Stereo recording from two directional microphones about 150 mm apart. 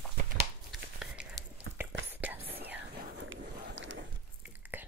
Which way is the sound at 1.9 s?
10° right (ahead or behind).